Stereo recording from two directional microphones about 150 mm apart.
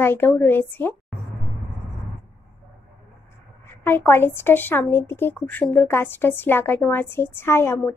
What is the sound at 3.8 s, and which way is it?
A woman's voice, 15° left (ahead or behind).